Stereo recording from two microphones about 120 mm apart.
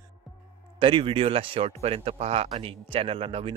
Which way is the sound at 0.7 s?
45° right (ahead or behind).